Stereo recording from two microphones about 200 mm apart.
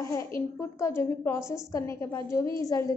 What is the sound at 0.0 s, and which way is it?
A woman's voice, 15° left (ahead or behind).